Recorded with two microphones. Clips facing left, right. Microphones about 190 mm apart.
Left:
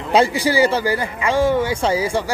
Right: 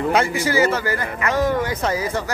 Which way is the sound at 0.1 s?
35° left (ahead or behind).